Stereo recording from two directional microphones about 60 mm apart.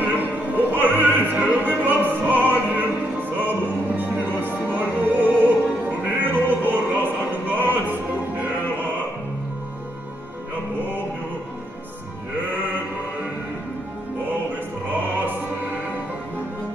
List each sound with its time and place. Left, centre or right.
0.0 s opera: right
5.9 s music: right